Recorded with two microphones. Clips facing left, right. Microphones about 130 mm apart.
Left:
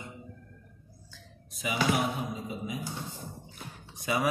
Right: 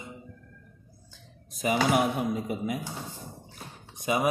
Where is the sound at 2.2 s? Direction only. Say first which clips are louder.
Right 6 dB; 65° right (ahead or behind).